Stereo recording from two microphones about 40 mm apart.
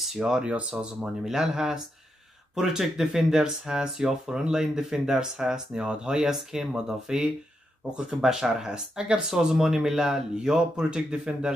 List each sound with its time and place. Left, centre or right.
0.0 s speech: centre
0.5 s speech: right
1.2 s speech: centre